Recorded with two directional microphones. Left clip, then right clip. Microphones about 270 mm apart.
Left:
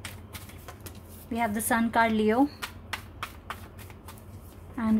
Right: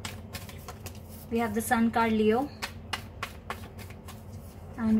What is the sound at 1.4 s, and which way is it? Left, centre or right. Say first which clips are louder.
Speech: even; left.